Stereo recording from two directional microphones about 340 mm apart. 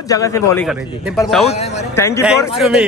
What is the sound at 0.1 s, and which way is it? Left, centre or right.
A man's voice, centre.